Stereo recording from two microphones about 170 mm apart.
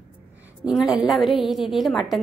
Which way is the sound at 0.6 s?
5° right (ahead or behind).